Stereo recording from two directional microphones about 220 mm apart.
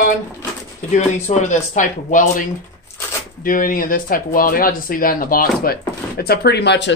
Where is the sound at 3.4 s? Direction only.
40° left (ahead or behind).